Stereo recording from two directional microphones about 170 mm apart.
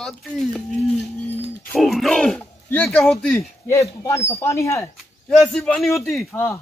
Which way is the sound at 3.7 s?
15° left (ahead or behind).